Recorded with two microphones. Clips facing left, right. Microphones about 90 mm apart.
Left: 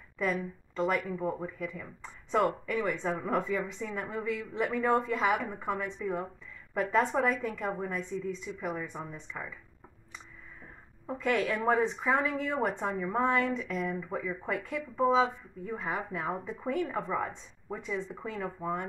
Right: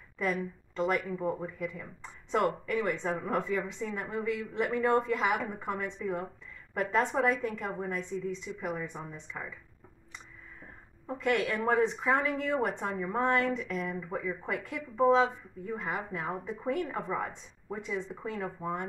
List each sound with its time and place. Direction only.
0.2 s a woman's voice: centre (ahead or behind)
11.1 s a woman's voice: centre (ahead or behind)